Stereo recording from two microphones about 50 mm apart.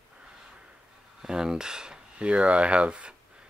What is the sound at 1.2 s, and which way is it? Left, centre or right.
Speech, centre.